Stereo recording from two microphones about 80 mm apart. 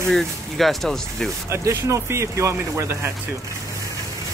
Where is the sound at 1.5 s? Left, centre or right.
Right.